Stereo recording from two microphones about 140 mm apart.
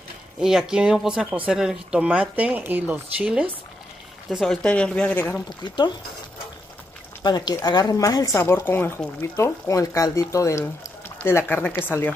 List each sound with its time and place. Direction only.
0.4 s speech: 5° right (ahead or behind)
7.2 s speech: 30° left (ahead or behind)